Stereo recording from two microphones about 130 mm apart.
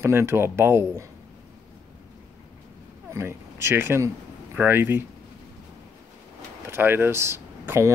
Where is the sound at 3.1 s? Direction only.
20° right (ahead or behind).